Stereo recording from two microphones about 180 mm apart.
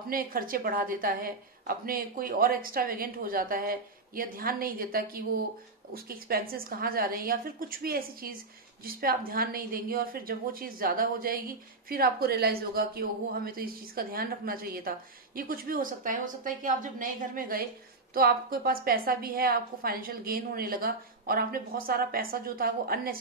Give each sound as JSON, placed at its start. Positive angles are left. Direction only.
{"t": 0.1, "sound": "a woman's voice", "side_deg": -55}